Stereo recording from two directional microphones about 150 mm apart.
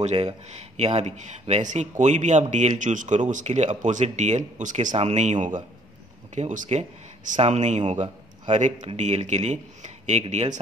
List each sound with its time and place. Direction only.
0.0 s speech: 45° right (ahead or behind)